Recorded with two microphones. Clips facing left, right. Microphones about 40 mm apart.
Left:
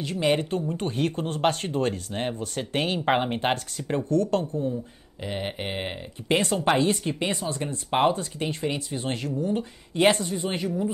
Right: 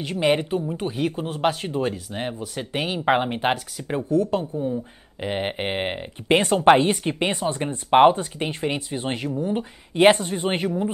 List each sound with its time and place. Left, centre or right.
0.0 s speech: right
5.2 s speech: right